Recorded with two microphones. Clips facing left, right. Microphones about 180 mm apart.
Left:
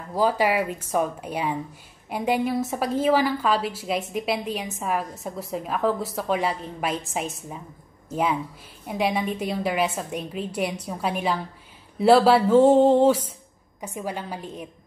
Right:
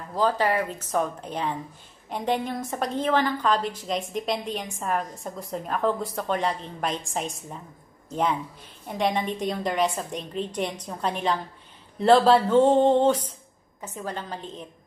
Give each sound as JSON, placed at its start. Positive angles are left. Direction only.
{"t": 0.1, "sound": "a woman's voice", "side_deg": 10}